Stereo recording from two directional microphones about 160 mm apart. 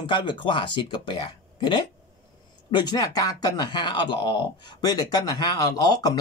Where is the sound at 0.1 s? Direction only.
30° left (ahead or behind).